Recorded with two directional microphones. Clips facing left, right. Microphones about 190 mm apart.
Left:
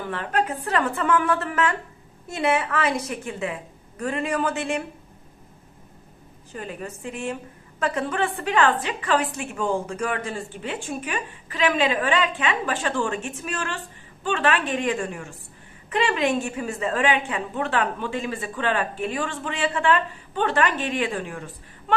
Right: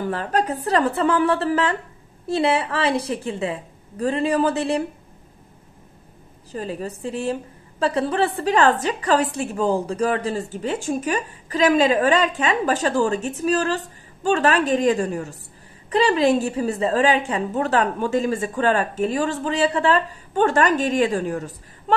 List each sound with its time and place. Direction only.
0.1 s a woman's voice: 35° right (ahead or behind)
6.5 s a woman's voice: 35° right (ahead or behind)